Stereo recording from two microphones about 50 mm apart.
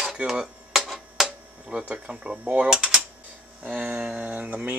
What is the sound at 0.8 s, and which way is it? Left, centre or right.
Tick, centre.